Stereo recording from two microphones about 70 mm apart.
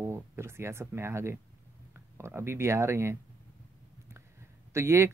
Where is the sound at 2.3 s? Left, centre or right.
Right.